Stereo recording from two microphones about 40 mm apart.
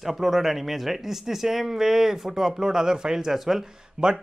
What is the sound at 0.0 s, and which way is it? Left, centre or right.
Speech, centre.